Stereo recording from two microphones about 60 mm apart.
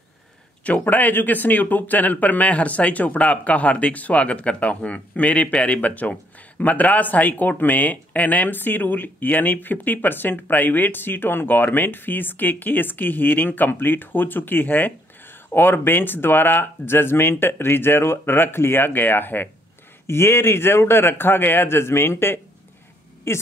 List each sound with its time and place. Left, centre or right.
0.7 s speech: left
20.1 s a man's voice: left